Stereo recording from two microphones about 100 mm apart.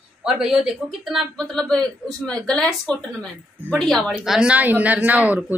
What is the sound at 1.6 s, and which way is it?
A woman's voice, 5° left (ahead or behind).